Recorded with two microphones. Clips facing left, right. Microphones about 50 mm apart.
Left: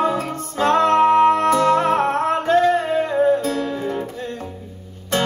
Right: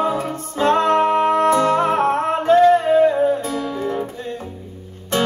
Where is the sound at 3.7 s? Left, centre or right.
Centre.